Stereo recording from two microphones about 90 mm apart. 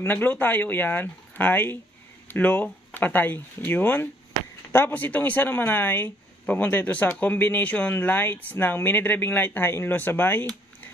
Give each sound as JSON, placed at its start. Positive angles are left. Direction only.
{"t": 0.0, "sound": "speech", "side_deg": 20}